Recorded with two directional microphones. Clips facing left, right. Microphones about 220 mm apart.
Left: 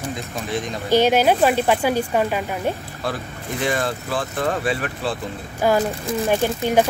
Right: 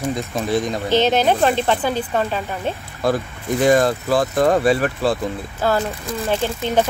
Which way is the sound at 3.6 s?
40° right (ahead or behind).